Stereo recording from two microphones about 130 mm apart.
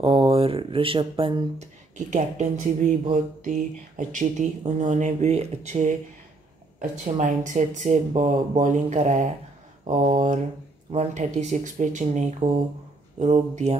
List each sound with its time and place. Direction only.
0.0 s speech: 45° right (ahead or behind)
1.6 s speech: 70° right (ahead or behind)
8.8 s speech: 60° right (ahead or behind)